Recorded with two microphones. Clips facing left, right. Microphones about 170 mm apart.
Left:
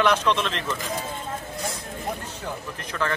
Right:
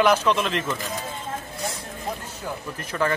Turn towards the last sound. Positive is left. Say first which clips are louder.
# right 3 dB
turn(degrees=-15)  # may be behind; listen again after turning